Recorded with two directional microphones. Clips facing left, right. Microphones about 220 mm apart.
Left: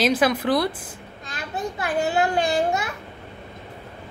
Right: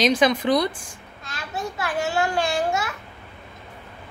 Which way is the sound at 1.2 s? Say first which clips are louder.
Left 1 dB; 20° left (ahead or behind).